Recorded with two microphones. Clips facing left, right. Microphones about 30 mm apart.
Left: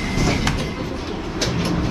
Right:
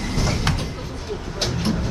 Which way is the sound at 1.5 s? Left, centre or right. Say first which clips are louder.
Left 1 dB; left.